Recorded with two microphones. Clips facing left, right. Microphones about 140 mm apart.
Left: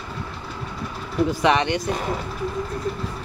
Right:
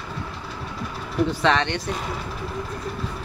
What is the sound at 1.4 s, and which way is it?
Speech, 10° left (ahead or behind).